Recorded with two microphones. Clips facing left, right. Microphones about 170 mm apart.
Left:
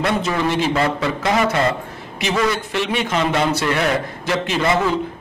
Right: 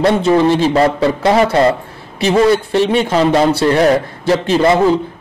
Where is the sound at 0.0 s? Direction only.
30° right (ahead or behind).